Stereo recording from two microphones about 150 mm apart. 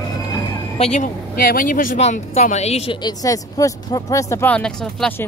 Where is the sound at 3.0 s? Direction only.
25° left (ahead or behind).